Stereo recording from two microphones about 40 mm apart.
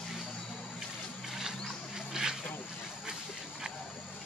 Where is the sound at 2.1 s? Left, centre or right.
Centre.